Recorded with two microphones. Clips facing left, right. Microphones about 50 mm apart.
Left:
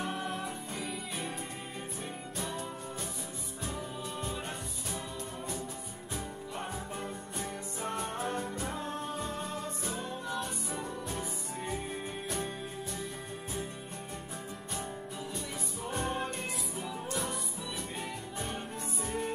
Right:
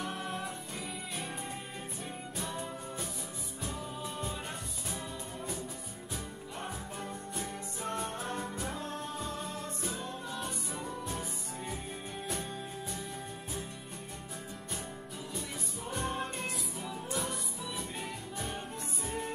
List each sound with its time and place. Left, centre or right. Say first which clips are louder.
0.1 s music: left 2 dB; centre
7.0 s music: left 1 dB; centre
8.7 s music: left 2 dB; left
9.2 s music: left 2 dB; centre
16.0 s music: left 1 dB; centre
19.0 s music: left 2 dB; centre